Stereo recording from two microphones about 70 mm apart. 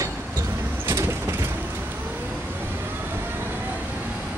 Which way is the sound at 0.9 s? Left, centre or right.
Right.